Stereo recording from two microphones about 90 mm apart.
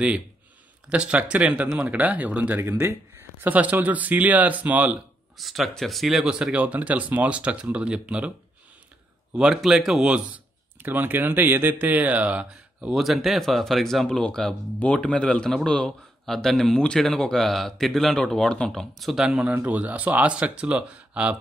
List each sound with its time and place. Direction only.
0.8 s speech: 10° right (ahead or behind)
5.4 s speech: centre (ahead or behind)
9.3 s a man's voice: 10° right (ahead or behind)
12.9 s speech: centre (ahead or behind)
19.5 s speech: 15° right (ahead or behind)